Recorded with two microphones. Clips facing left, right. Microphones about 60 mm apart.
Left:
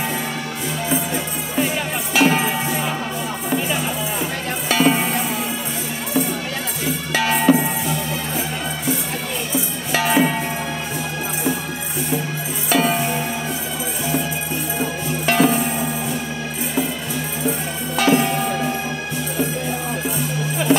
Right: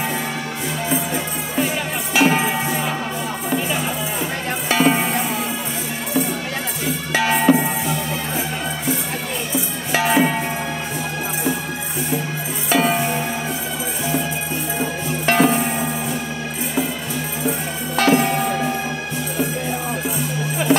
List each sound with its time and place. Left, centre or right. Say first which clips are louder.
2.1 s music: even; right
4.6 s music: even; right
7.1 s music: right 1 dB; right
9.9 s music: right 1 dB; right
12.6 s music: even; right
15.2 s music: right 1 dB; right
17.9 s music: right 1 dB; right